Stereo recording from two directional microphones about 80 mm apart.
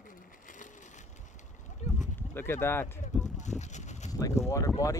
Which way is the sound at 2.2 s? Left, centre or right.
Left.